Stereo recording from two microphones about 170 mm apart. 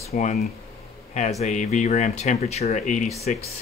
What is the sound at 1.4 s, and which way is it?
Speech, 45° left (ahead or behind).